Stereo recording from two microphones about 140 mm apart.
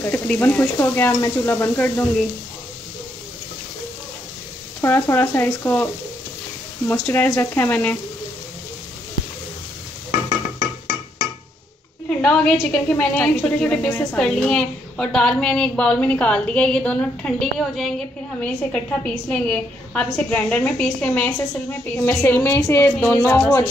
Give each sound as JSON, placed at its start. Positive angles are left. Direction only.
{"t": 0.1, "sound": "a woman's voice", "side_deg": 10}
{"t": 4.8, "sound": "a woman's voice", "side_deg": 15}
{"t": 6.9, "sound": "a woman's voice", "side_deg": 15}
{"t": 12.2, "sound": "a woman's voice", "side_deg": 5}